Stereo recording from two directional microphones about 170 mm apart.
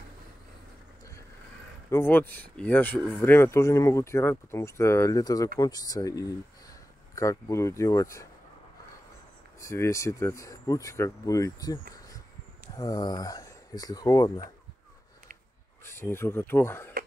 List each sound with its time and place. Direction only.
1.9 s speech: 15° left (ahead or behind)
9.6 s speech: 15° left (ahead or behind)
15.8 s speech: 15° left (ahead or behind)